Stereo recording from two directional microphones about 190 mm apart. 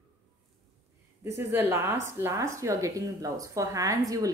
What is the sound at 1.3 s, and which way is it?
Speech, 15° right (ahead or behind).